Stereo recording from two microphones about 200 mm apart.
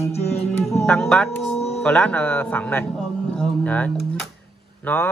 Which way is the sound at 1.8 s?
5° left (ahead or behind).